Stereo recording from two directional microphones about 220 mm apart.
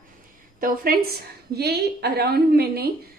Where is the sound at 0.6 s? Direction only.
40° right (ahead or behind).